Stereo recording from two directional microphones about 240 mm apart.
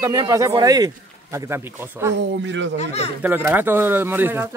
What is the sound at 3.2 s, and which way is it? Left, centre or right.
Speech, centre.